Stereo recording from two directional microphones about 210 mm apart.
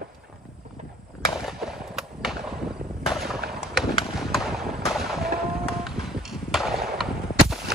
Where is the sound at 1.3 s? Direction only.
Centre (ahead or behind).